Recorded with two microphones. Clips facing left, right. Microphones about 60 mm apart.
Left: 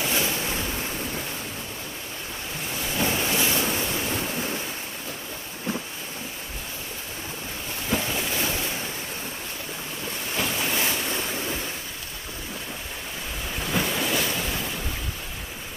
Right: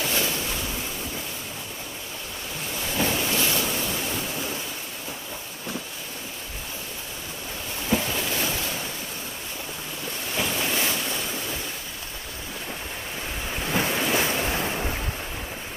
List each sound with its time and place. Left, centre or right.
0.1 s ocean: centre
2.9 s waves: centre
7.9 s boat: centre
10.3 s waves: centre
13.7 s waves: centre
14.1 s waves: right